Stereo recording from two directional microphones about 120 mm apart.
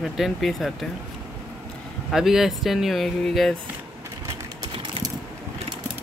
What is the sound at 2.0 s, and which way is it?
Speech, 5° right (ahead or behind).